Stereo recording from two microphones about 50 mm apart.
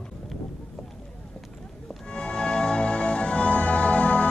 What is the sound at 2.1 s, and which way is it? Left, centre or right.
Music, centre.